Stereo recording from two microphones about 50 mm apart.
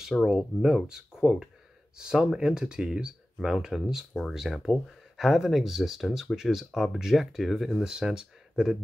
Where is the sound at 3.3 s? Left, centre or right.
Centre.